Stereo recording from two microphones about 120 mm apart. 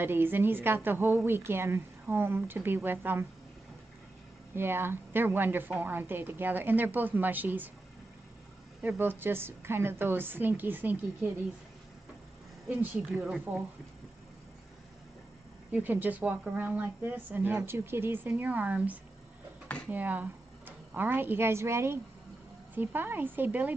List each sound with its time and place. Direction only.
0.0 s speech: 15° right (ahead or behind)
4.6 s speech: 20° right (ahead or behind)
8.8 s speech: 15° right (ahead or behind)
12.6 s speech: 15° right (ahead or behind)
15.7 s speech: 15° right (ahead or behind)